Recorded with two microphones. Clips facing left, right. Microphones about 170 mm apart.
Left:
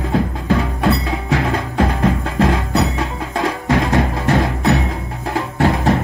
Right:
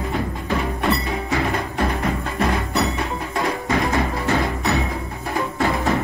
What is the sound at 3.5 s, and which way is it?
Music, 80° left.